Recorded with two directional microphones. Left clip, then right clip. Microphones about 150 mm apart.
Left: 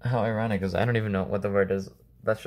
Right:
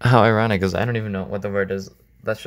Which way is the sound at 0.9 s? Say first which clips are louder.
Right 1 dB; 5° right (ahead or behind).